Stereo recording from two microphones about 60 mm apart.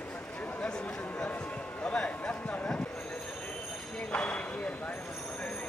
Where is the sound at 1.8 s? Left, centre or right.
Centre.